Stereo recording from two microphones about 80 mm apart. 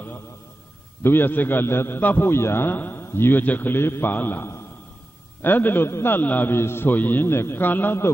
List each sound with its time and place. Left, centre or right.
1.0 s a man's voice: left